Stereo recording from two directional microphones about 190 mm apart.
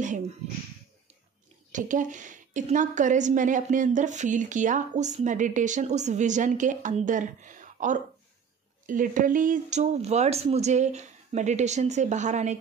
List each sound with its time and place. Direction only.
1.7 s a woman's voice: 40° right (ahead or behind)